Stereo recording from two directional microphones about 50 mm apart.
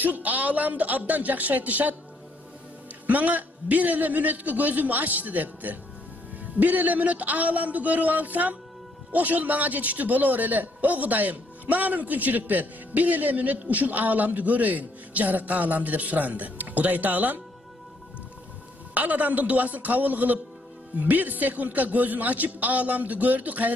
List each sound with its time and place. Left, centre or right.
0.0 s a man's voice: right
3.1 s a man's voice: right
18.9 s a man's voice: right